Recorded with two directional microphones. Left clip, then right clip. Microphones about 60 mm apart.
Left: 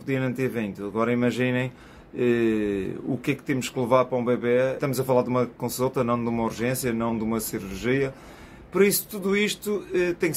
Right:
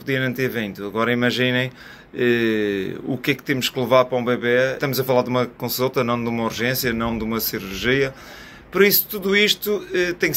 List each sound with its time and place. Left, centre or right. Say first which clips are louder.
0.0 s speech: right 5 dB; centre